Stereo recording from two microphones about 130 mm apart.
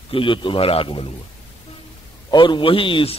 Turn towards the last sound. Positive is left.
turn(degrees=45)  # may be behind; listen again after turning